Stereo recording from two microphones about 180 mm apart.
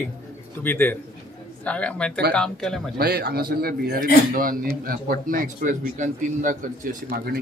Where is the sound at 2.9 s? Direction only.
55° right (ahead or behind).